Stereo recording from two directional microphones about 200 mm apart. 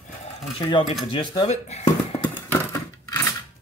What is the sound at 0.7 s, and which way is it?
Speech, 25° left (ahead or behind).